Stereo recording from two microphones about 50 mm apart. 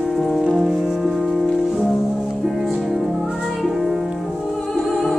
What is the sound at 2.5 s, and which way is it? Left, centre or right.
Music, centre.